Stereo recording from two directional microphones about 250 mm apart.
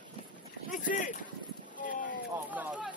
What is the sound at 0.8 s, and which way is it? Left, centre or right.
Speech, left.